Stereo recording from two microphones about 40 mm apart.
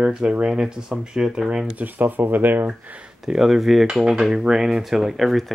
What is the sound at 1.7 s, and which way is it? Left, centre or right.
Speech, right.